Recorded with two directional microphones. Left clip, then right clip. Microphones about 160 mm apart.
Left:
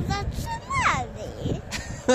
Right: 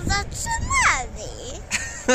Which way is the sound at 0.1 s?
15° left (ahead or behind).